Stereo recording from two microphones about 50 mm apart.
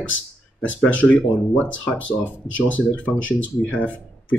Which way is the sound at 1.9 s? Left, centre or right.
Left.